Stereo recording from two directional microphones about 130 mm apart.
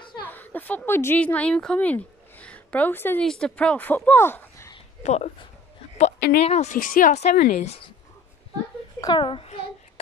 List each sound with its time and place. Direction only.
0.2 s a woman's voice: 15° left (ahead or behind)
5.0 s speech: 60° left (ahead or behind)
9.0 s a child's voice: 40° left (ahead or behind)